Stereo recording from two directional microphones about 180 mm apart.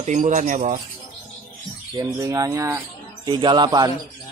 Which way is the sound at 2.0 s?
20° right (ahead or behind).